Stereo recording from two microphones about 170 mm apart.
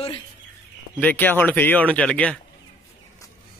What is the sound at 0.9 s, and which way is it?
A man's voice, 10° left (ahead or behind).